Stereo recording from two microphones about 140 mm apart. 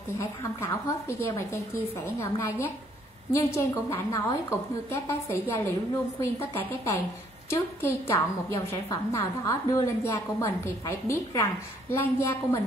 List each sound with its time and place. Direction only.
0.2 s a woman's voice: 20° left (ahead or behind)